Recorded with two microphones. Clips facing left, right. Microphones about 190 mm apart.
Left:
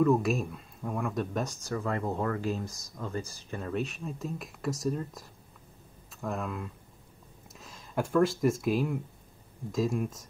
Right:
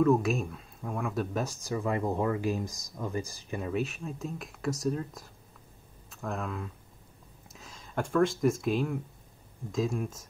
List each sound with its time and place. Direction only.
0.0 s speech: centre (ahead or behind)